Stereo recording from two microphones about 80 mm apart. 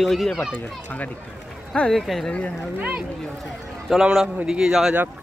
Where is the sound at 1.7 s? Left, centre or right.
Centre.